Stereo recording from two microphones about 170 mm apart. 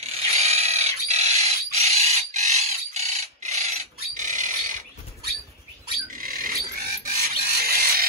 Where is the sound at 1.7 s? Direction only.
40° right (ahead or behind).